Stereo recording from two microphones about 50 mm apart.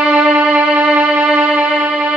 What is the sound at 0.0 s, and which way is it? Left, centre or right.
Music, right.